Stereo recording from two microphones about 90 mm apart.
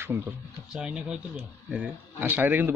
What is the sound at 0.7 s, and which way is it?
Speech, 10° right (ahead or behind).